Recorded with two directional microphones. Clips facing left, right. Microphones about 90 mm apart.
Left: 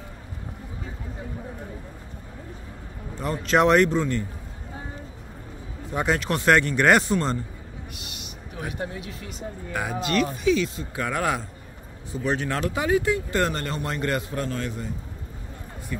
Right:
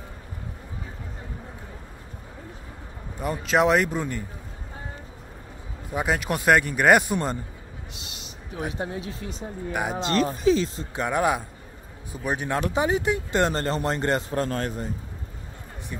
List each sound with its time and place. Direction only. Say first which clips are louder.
3.2 s a man's voice: left 1 dB; 10° right (ahead or behind)
5.9 s a man's voice: left 1 dB; 10° right (ahead or behind)
8.5 s speech: right 2 dB; 25° right (ahead or behind)
9.7 s speech: right 1 dB; 20° right (ahead or behind); by 10.9 s 35° right (ahead or behind)
11.0 s speech: right 2 dB; 20° right (ahead or behind); by 14.9 s 45° right (ahead or behind)
15.9 s speech: left 4 dB; 25° right (ahead or behind)